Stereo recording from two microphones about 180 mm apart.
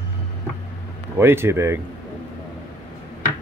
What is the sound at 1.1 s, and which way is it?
Speech, 15° right (ahead or behind).